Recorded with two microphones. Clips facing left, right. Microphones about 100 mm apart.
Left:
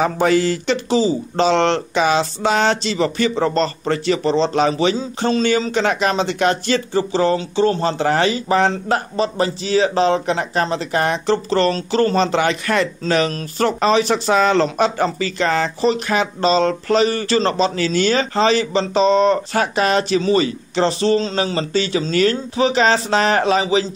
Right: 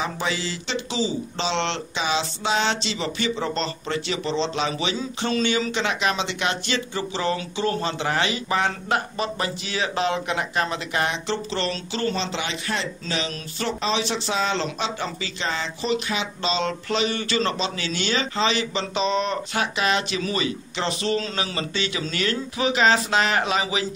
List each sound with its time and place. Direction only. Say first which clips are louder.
0.0 s speech: left 11 dB; 50° left (ahead or behind); by 23.9 s 35° left (ahead or behind)